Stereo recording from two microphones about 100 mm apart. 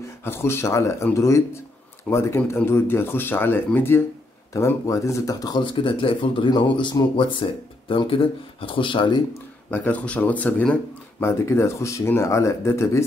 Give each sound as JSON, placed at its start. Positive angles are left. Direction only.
{"t": 0.2, "sound": "speech", "side_deg": 25}
{"t": 5.6, "sound": "speech", "side_deg": 55}
{"t": 9.7, "sound": "speech", "side_deg": 15}
{"t": 11.1, "sound": "speech", "side_deg": 25}